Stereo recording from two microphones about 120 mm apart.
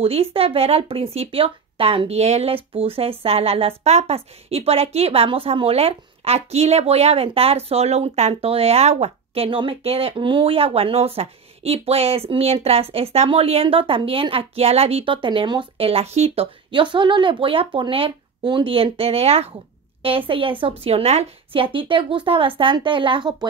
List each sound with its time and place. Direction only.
0.0 s a woman's voice: 55° right (ahead or behind)